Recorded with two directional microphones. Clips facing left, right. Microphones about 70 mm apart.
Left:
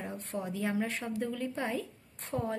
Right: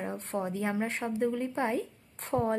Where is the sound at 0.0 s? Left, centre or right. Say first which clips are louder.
Right 4 dB; right.